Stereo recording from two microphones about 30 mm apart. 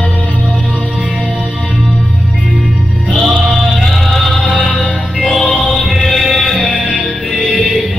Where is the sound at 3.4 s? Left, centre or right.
Centre.